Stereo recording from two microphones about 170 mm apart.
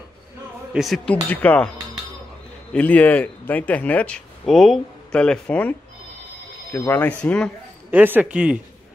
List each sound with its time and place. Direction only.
0.7 s speech: centre (ahead or behind)
2.7 s speech: 10° left (ahead or behind)
7.9 s a man's voice: 10° right (ahead or behind)